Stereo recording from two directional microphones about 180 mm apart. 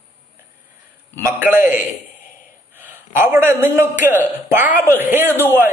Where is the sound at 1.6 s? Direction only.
45° left (ahead or behind).